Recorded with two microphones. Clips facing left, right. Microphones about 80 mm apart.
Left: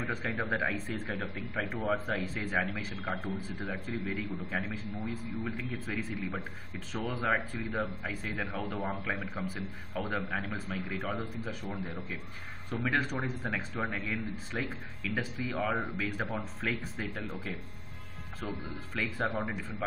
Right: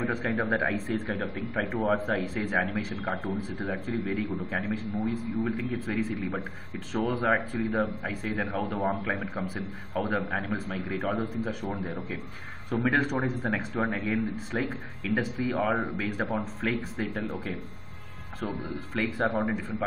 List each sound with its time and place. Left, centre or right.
0.1 s a man's voice: centre
12.9 s a man's voice: centre
15.5 s a man's voice: centre
16.0 s speech: centre
18.9 s speech: centre